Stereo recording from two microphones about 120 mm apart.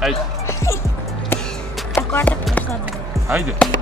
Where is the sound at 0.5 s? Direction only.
20° left (ahead or behind).